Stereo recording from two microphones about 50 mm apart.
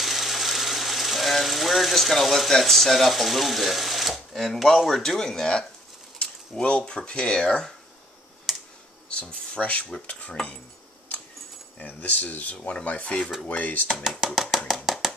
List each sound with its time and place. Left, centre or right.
0.0 s speech: centre
8.5 s clicking: centre
9.1 s speech: centre
11.8 s speech: left
14.2 s a sound: centre